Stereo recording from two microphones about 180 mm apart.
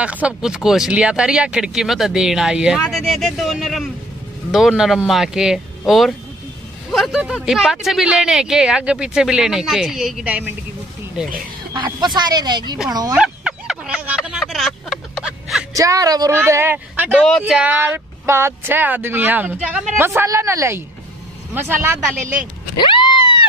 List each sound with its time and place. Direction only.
0.0 s speech: 5° right (ahead or behind)
11.7 s speech: 25° right (ahead or behind)
13.1 s a sound: 5° right (ahead or behind)
15.7 s speech: 20° right (ahead or behind)
17.1 s speech: 5° left (ahead or behind); by 22.3 s 15° right (ahead or behind)
22.8 s a sound: 25° left (ahead or behind)